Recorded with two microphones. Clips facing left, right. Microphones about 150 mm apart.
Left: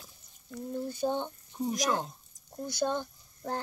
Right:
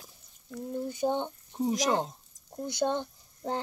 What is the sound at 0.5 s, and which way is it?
A child's voice, 15° right (ahead or behind).